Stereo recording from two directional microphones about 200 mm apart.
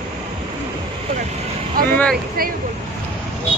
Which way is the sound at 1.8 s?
45° right (ahead or behind).